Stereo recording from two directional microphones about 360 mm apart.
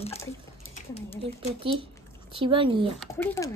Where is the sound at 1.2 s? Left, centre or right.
Centre.